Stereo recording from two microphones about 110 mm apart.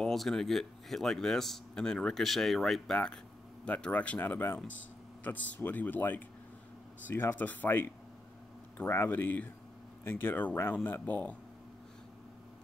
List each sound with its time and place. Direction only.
0.0 s speech: 5° left (ahead or behind)